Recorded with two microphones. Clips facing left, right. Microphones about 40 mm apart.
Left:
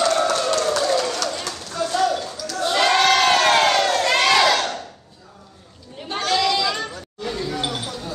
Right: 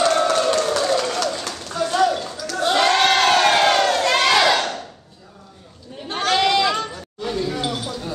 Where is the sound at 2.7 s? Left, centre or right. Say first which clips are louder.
Even; centre.